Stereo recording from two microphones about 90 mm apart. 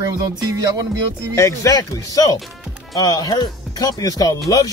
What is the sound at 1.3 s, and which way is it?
Speech, 35° left (ahead or behind).